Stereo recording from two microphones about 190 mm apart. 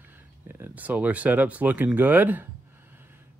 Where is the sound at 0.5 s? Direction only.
10° right (ahead or behind).